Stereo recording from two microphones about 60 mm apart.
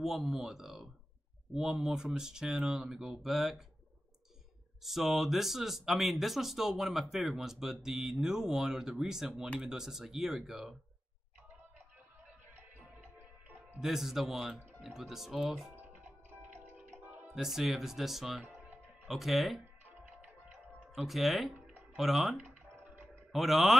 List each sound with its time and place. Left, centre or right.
0.0 s speech: centre
4.8 s speech: centre
13.7 s speech: centre
15.7 s music: right
17.3 s speech: centre
20.9 s speech: centre